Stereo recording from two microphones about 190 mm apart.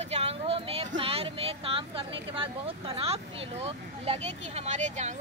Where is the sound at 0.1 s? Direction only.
30° right (ahead or behind).